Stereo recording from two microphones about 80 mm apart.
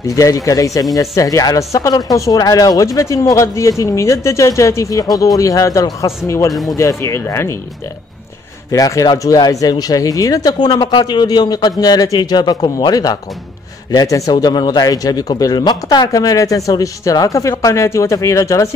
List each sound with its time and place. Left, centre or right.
0.0 s speech: left
6.5 s speech: centre
6.8 s speech: left
8.7 s speech: left
13.9 s speech: left
14.3 s speech: left
16.1 s speech: left